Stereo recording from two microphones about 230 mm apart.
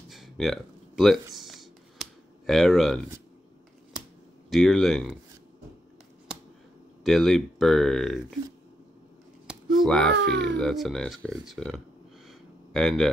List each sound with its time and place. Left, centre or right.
0.1 s a sound: centre
4.5 s speech: centre
7.0 s speech: centre
9.5 s speech: centre
10.1 s speech: right
10.6 s speech: centre
12.3 s a sound: centre